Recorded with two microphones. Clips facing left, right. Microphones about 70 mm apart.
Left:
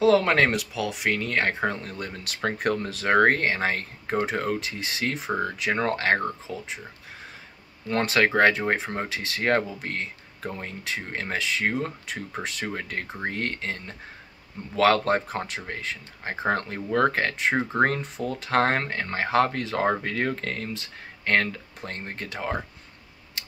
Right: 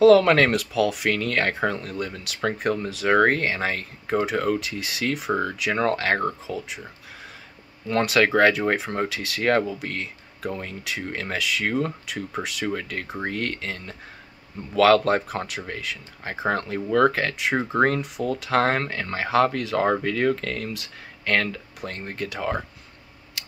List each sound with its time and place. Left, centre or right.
0.0 s speech: left
7.9 s speech: left
23.4 s scissors: left